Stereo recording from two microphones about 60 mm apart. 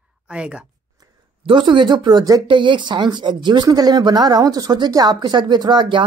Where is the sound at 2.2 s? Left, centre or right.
Right.